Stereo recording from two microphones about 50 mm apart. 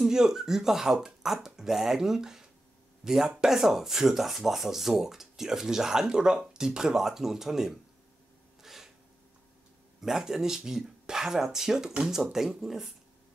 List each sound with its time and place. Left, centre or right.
0.0 s speech: centre
8.6 s a sound: centre
9.9 s speech: centre